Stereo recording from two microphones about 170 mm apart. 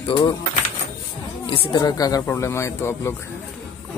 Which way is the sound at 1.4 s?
30° left (ahead or behind).